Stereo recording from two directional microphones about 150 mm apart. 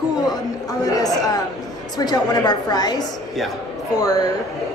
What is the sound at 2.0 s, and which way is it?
A woman's voice, 25° left (ahead or behind).